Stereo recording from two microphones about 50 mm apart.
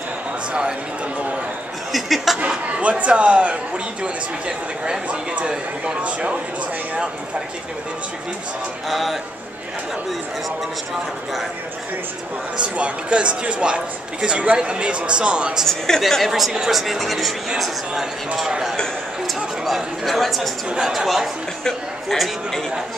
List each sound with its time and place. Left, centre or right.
0.5 s speech: centre
1.9 s speech: centre
2.4 s speech: right
8.8 s speech: centre
12.6 s speech: right
15.6 s speech: centre
19.2 s speech: centre